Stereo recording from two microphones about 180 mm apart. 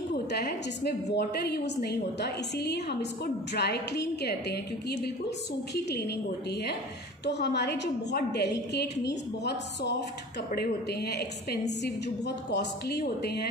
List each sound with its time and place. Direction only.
0.1 s a woman's voice: 65° left (ahead or behind)